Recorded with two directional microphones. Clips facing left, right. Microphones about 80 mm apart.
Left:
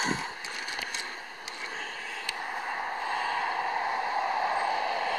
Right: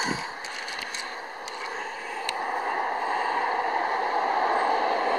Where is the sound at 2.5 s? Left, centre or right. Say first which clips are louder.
Right 6 dB; right.